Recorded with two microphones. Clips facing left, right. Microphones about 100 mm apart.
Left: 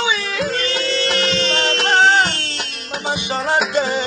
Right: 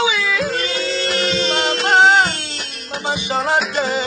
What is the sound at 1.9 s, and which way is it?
Music, centre (ahead or behind).